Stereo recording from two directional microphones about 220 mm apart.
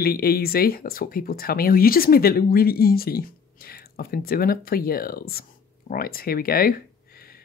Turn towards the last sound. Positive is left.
turn(degrees=40)  # may be behind; listen again after turning